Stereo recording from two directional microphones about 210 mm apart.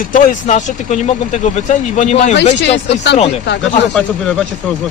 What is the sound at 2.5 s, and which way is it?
Speech, 55° left (ahead or behind).